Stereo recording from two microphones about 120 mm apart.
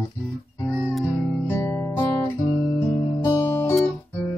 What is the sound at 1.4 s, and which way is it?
Guitar, 20° left (ahead or behind).